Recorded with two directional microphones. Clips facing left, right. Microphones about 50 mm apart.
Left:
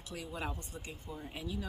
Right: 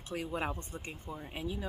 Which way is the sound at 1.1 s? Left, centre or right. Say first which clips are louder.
Right 1 dB; centre.